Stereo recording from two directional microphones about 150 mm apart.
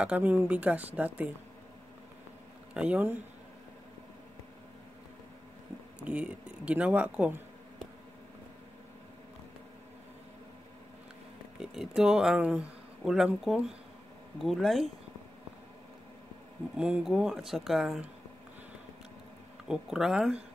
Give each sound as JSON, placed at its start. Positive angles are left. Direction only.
{"t": 0.0, "sound": "speech", "side_deg": -10}
{"t": 2.7, "sound": "speech", "side_deg": -10}
{"t": 6.0, "sound": "speech", "side_deg": -10}
{"t": 11.6, "sound": "speech", "side_deg": -5}
{"t": 16.7, "sound": "speech", "side_deg": -5}
{"t": 19.7, "sound": "speech", "side_deg": -5}